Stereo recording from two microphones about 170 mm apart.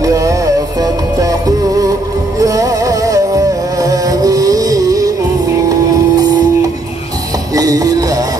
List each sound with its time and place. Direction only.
0.0 s music: 20° right (ahead or behind)
2.4 s music: 20° right (ahead or behind)
7.5 s music: 20° right (ahead or behind)